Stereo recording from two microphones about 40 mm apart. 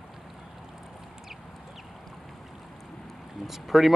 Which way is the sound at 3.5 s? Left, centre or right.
Centre.